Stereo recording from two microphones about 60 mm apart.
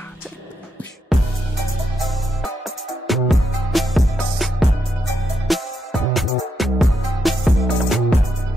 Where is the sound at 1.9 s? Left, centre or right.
Centre.